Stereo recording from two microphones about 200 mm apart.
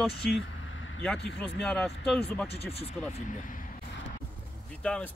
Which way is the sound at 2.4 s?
30° left (ahead or behind).